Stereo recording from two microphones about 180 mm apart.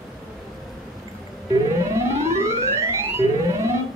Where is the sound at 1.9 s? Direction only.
15° right (ahead or behind).